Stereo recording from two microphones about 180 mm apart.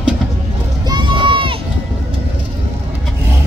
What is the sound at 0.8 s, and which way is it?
Run, 25° right (ahead or behind).